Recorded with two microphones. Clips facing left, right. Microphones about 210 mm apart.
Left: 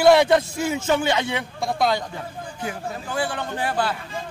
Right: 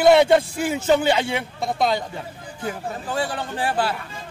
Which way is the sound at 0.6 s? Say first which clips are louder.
Right 2 dB; 30° right (ahead or behind).